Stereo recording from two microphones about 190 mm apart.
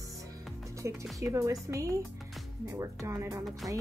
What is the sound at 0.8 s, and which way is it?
Speech, 15° right (ahead or behind).